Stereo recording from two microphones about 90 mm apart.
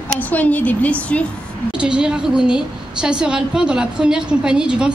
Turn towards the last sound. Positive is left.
turn(degrees=-10)  # may be behind; listen again after turning